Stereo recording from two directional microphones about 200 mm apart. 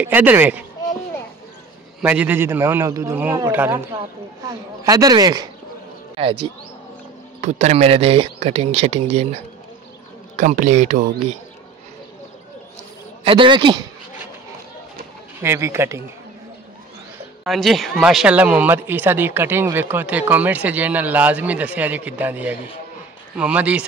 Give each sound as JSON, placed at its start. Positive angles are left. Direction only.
{"t": 0.0, "sound": "speech", "side_deg": -10}
{"t": 2.0, "sound": "speech", "side_deg": -10}
{"t": 10.3, "sound": "speech", "side_deg": -40}
{"t": 13.2, "sound": "speech", "side_deg": -25}
{"t": 15.4, "sound": "speech", "side_deg": -15}
{"t": 17.5, "sound": "speech", "side_deg": 0}